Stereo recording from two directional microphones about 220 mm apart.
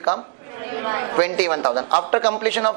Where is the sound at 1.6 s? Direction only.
25° right (ahead or behind).